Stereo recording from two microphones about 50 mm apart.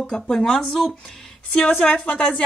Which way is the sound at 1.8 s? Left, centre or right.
Left.